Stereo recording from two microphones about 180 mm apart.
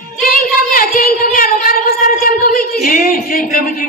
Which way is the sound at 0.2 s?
50° left (ahead or behind).